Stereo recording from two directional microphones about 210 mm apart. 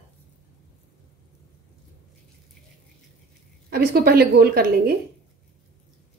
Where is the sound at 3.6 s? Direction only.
50° right (ahead or behind).